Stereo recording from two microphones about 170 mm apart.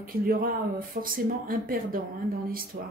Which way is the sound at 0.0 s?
60° right (ahead or behind).